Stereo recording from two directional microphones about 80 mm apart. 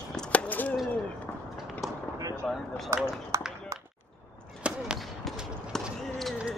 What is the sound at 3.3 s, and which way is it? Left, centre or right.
Run, right.